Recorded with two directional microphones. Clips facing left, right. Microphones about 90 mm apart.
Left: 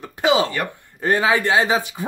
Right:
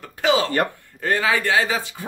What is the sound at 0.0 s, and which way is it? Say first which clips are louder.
Speech: left 2 dB; 20° left (ahead or behind).